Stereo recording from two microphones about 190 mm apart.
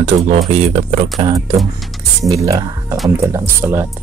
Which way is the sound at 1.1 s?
20° right (ahead or behind).